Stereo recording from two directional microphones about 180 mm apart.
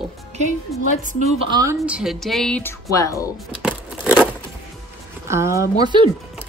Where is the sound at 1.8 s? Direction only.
5° right (ahead or behind).